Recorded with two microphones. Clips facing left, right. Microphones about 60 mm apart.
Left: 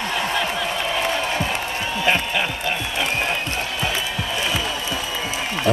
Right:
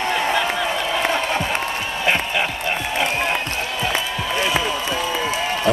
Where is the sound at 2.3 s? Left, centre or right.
Right.